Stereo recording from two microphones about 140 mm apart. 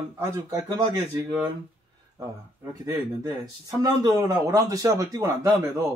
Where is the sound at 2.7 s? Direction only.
25° right (ahead or behind).